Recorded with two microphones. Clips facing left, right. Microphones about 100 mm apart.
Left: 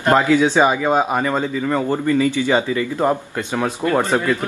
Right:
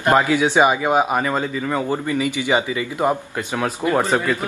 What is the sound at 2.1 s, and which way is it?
Speech, 15° right (ahead or behind).